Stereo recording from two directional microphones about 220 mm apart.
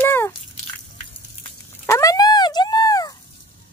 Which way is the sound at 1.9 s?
15° left (ahead or behind).